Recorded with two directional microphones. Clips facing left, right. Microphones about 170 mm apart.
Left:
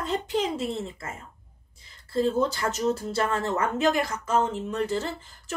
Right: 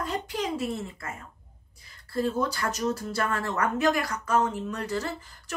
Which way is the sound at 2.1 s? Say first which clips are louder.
Left 3 dB; 25° left (ahead or behind).